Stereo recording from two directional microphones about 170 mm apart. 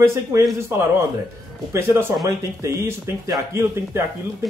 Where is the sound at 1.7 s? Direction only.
15° right (ahead or behind).